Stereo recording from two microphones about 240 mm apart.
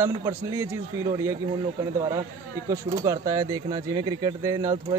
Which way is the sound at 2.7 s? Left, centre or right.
Centre.